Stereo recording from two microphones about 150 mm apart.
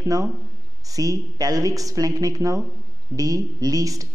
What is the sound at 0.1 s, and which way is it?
A man's voice, 25° right (ahead or behind).